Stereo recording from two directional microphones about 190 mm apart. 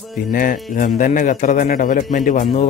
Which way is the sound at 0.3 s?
45° left (ahead or behind).